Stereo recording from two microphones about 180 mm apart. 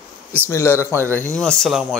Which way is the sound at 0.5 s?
15° left (ahead or behind).